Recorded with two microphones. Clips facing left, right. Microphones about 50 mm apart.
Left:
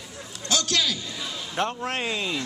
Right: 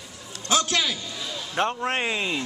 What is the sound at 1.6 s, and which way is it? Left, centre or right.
Speech, centre.